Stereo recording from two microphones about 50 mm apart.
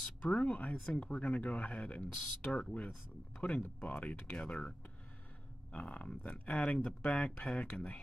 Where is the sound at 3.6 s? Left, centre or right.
Left.